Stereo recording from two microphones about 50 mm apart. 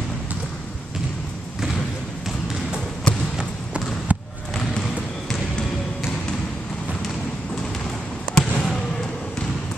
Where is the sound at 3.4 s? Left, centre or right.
Right.